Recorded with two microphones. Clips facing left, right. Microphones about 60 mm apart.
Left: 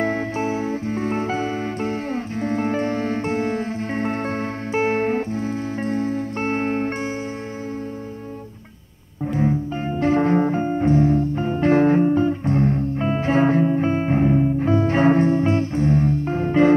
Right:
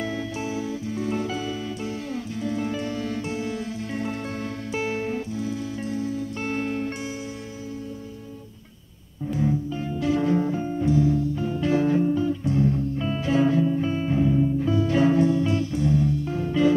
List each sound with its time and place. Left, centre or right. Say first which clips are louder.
0.0 s music: left 7 dB; left
9.3 s music: left 3 dB; left